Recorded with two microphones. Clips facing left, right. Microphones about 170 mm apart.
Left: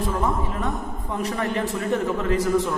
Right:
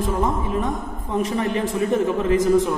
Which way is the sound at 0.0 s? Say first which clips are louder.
Right 2 dB; 20° right (ahead or behind).